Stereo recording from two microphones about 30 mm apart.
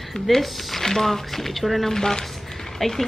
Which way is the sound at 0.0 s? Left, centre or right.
Centre.